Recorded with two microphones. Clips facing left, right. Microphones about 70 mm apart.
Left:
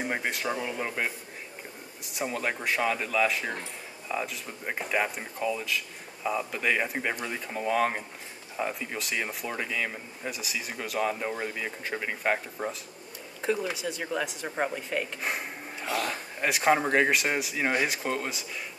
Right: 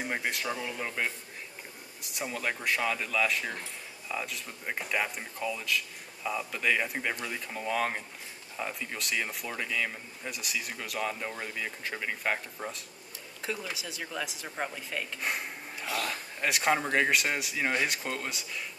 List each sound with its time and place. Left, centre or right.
0.0 s speech: centre
14.5 s speech: centre
14.8 s speech: centre